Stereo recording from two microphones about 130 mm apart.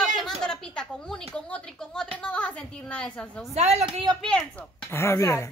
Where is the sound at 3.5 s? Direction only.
55° right (ahead or behind).